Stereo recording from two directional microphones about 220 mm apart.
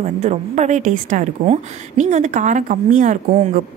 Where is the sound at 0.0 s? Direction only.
30° right (ahead or behind).